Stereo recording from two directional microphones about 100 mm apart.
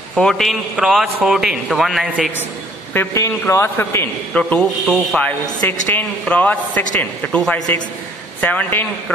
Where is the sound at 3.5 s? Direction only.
25° left (ahead or behind).